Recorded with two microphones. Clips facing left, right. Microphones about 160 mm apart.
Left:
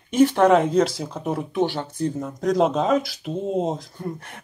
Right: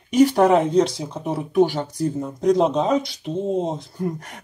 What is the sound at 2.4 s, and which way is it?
Speech, centre (ahead or behind).